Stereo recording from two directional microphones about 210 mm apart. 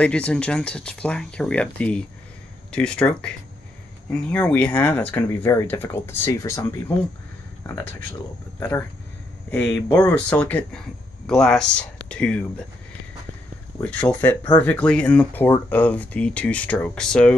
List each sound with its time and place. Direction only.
0.0 s speech: 5° left (ahead or behind)
7.6 s speech: 10° left (ahead or behind)
9.8 s speech: 10° left (ahead or behind)
13.8 s speech: 5° left (ahead or behind)